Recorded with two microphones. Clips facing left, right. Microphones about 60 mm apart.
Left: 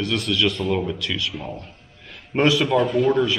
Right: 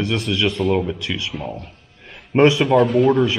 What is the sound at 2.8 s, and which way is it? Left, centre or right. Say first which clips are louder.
Speech: right 4 dB; right.